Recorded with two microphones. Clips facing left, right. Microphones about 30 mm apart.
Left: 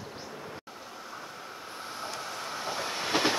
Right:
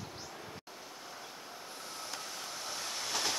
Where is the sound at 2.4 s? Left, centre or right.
Left.